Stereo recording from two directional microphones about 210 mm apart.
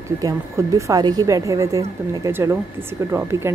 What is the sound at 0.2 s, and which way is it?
A woman's voice, 15° right (ahead or behind).